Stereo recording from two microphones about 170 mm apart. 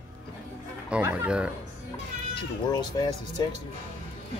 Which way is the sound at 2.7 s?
25° left (ahead or behind).